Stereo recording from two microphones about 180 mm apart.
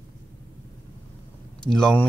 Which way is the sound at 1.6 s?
5° left (ahead or behind).